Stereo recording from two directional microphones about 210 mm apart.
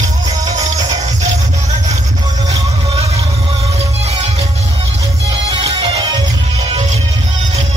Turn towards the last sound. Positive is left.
turn(degrees=-25)  # may be behind; listen again after turning